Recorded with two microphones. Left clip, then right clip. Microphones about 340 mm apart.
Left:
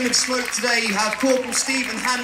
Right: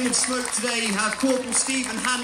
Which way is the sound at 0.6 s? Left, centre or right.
Left.